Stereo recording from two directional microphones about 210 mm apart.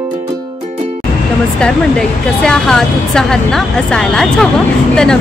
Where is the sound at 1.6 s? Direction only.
5° left (ahead or behind).